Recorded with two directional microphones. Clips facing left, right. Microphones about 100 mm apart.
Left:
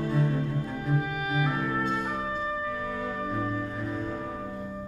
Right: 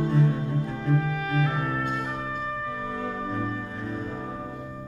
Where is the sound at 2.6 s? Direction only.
25° right (ahead or behind).